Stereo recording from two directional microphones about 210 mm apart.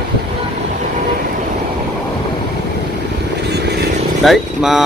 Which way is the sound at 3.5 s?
50° right (ahead or behind).